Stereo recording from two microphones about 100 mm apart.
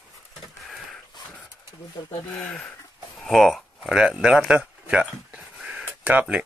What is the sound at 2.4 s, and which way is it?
Speech, 15° left (ahead or behind).